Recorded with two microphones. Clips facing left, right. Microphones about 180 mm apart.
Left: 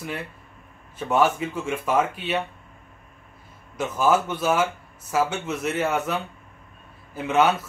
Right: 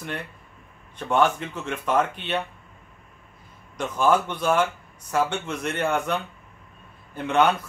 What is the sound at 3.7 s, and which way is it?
Speech, 5° left (ahead or behind).